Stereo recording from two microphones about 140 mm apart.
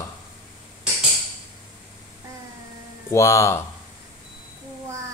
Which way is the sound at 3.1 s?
20° left (ahead or behind).